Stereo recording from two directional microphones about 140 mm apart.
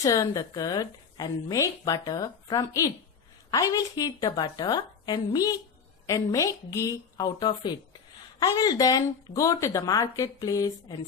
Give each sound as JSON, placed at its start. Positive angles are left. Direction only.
{"t": 0.0, "sound": "a woman's voice", "side_deg": 25}